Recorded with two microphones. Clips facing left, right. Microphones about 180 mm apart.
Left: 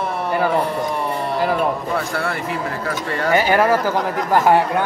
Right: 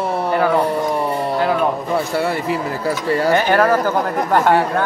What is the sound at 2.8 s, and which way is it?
Speech, 35° right (ahead or behind).